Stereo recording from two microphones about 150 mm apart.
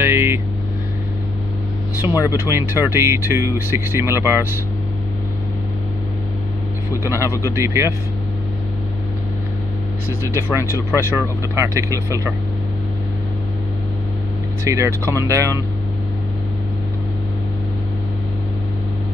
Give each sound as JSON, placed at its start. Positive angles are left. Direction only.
{"t": 0.0, "sound": "vehicle", "side_deg": -15}
{"t": 2.0, "sound": "speech", "side_deg": -15}
{"t": 6.9, "sound": "speech", "side_deg": -20}
{"t": 10.3, "sound": "speech", "side_deg": -15}
{"t": 14.6, "sound": "speech", "side_deg": -20}